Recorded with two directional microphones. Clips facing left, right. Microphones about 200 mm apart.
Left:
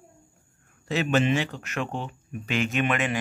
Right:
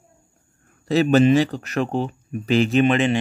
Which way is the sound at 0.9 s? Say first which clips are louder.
Right 8 dB; 35° right (ahead or behind).